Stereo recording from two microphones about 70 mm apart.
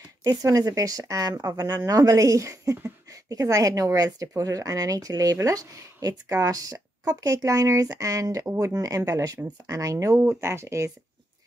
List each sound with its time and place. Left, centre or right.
0.2 s speech: right
10.1 s speech: right